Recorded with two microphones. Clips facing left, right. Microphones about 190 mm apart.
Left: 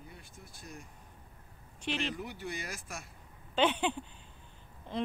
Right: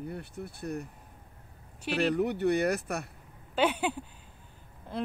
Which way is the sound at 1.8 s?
40° right (ahead or behind).